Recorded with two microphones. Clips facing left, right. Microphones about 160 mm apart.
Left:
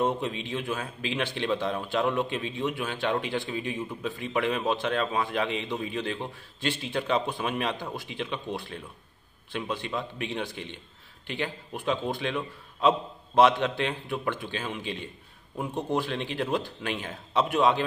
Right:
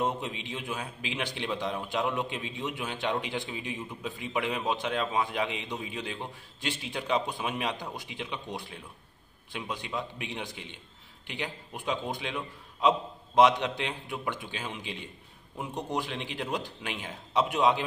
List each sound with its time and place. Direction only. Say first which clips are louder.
0.0 s a man's voice: left 4 dB; 15° right (ahead or behind)